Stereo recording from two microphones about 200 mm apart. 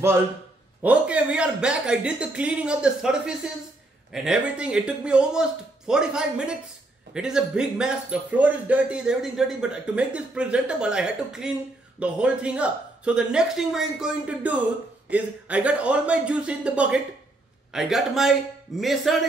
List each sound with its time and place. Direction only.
0.8 s speech: 5° right (ahead or behind)